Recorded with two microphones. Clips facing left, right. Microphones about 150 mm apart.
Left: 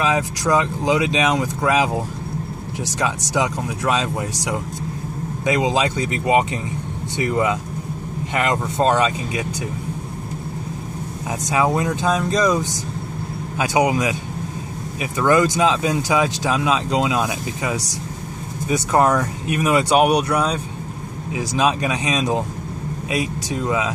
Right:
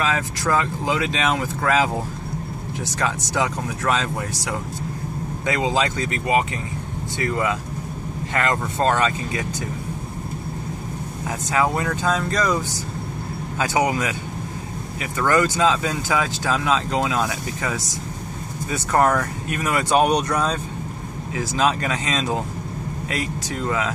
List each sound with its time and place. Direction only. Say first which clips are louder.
0.0 s speech: left 3 dB; 15° left (ahead or behind)
3.0 s speech: left 2 dB; 15° left (ahead or behind)
11.4 s speech: left 2 dB; 15° left (ahead or behind)